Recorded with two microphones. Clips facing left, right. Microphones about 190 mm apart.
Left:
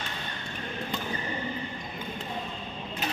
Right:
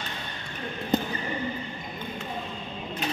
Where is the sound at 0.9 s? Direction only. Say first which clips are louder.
Right 12 dB; 45° right (ahead or behind).